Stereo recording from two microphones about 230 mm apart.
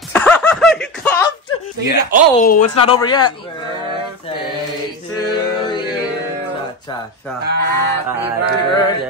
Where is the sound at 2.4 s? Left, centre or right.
Left.